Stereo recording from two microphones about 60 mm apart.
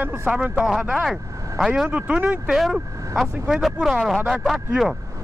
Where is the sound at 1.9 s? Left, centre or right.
Right.